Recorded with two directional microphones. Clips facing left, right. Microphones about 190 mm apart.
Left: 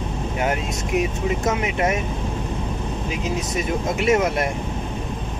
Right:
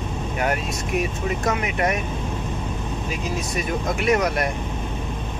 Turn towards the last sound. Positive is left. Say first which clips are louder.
# left 2 dB
turn(degrees=25)  # may be behind; listen again after turning